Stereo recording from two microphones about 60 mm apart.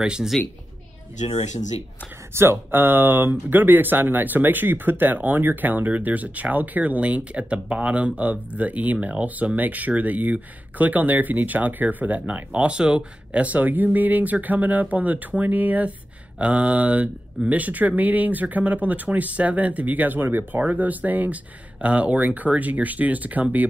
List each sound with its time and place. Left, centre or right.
0.0 s a woman's voice: centre
2.3 s speech: right